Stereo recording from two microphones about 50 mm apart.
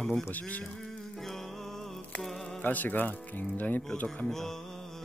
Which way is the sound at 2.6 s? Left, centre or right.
Left.